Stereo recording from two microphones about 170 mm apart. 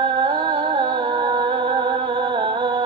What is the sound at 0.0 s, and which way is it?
Music, 30° right (ahead or behind).